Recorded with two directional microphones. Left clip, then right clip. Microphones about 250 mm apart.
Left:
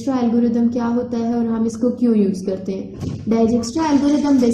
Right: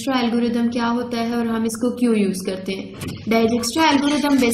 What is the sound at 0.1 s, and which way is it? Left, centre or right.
A woman's voice, right.